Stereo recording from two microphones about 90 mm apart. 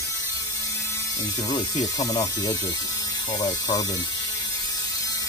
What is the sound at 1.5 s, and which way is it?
Speech, 45° left (ahead or behind).